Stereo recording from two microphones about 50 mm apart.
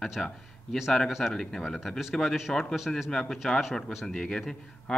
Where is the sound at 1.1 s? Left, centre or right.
Centre.